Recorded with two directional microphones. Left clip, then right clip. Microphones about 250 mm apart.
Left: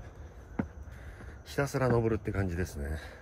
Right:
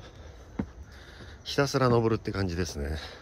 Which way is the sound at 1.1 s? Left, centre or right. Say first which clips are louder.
Right 6 dB; centre.